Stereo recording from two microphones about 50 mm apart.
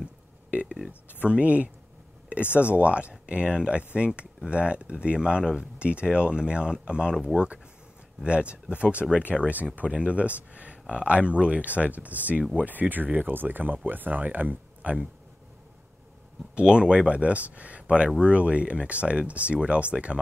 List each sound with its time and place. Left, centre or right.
0.5 s speech: right
16.5 s speech: centre